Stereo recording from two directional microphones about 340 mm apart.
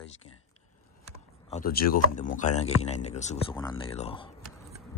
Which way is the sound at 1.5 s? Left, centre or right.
Left.